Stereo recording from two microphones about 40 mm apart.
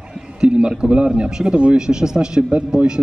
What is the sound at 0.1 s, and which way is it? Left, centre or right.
A man's voice, right.